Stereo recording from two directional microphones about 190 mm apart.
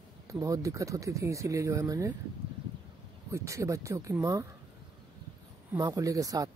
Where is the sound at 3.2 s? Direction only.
15° right (ahead or behind).